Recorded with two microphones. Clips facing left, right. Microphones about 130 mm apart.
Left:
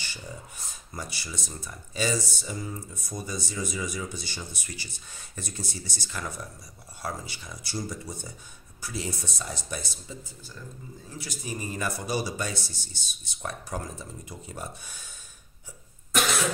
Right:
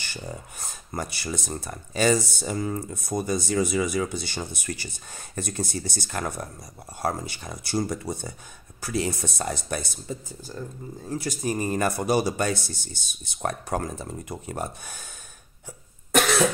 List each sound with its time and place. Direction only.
0.0 s speech: 55° right (ahead or behind)
16.1 s cough: 65° right (ahead or behind)